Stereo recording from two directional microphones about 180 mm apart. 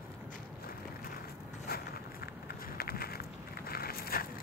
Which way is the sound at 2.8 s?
55° left (ahead or behind).